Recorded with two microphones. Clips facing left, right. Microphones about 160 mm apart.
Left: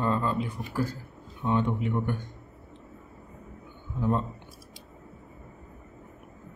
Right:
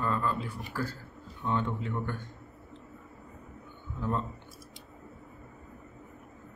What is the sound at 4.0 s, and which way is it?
Speech, 20° left (ahead or behind).